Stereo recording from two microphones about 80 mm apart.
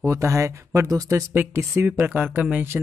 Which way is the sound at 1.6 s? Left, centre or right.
Right.